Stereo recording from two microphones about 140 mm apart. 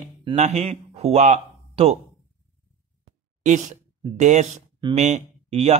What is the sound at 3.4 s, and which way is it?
Speech, 60° right (ahead or behind).